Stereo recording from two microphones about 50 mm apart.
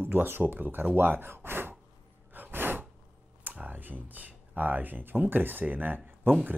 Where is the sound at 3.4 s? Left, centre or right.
Right.